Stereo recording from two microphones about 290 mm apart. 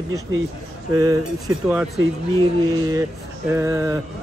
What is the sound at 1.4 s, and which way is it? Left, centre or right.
Speech, centre.